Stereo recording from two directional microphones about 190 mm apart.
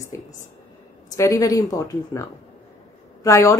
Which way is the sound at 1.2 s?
15° left (ahead or behind).